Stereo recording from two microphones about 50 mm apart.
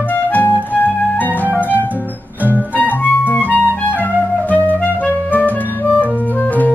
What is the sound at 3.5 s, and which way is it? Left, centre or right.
Clarinet, left.